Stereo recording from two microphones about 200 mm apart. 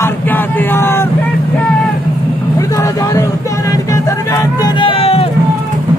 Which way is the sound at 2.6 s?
15° left (ahead or behind).